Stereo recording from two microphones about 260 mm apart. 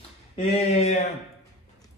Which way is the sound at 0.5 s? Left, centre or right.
Left.